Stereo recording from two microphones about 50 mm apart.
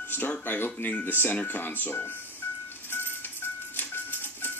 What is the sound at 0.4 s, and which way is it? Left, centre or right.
Speech, left.